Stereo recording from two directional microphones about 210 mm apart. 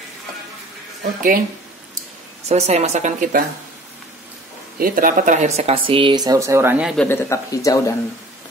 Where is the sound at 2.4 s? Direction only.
30° right (ahead or behind).